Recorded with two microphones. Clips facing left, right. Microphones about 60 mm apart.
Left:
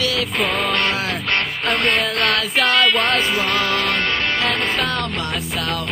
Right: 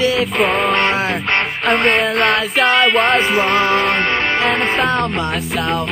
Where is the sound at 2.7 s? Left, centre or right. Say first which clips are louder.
Right 4 dB; right.